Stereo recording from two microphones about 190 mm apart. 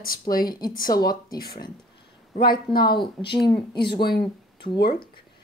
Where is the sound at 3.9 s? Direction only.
25° left (ahead or behind).